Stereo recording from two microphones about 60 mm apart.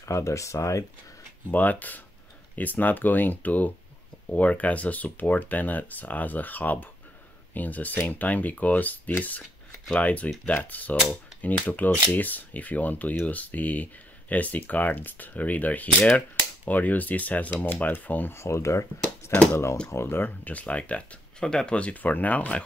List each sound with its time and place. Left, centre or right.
0.0 s speech: left
1.5 s speech: left
18.3 s speech: left